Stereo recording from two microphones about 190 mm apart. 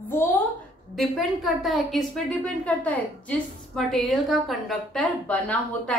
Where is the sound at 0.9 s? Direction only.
Centre (ahead or behind).